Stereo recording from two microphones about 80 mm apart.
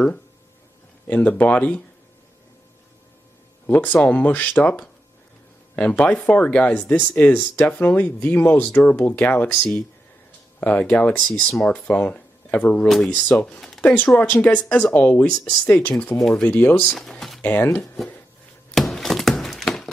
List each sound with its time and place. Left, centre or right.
1.0 s speech: centre
3.6 s speech: left
11.2 s speech: centre
11.7 s speech: centre
12.8 s speech: centre
13.1 s speech: centre
13.8 s speech: left
16.4 s speech: centre
16.8 s speech: centre
17.4 s speech: left
18.8 s a sound: centre